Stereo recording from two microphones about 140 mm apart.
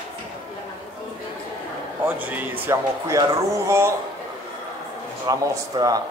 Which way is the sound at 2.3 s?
15° right (ahead or behind).